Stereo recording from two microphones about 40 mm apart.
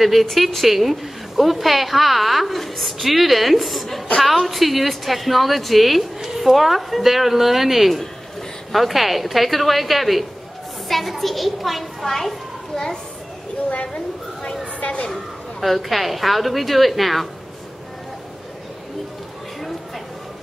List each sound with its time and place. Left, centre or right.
0.0 s a woman's voice: centre
12.7 s a child's voice: centre
15.6 s a woman's voice: centre